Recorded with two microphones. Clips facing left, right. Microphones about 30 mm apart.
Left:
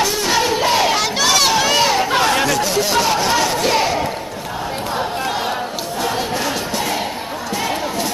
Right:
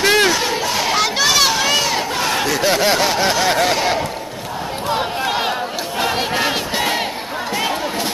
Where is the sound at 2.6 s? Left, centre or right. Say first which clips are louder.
Right 1 dB; right.